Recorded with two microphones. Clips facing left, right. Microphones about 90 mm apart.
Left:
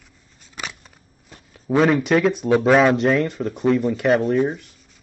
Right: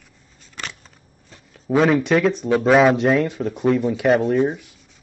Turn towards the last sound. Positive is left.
turn(degrees=0)  # may be behind; listen again after turning